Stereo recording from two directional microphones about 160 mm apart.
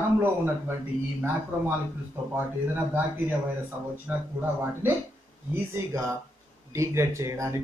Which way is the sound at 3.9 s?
15° right (ahead or behind).